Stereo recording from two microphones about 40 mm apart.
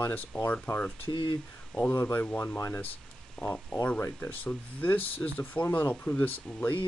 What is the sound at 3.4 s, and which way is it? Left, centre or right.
Speech, centre.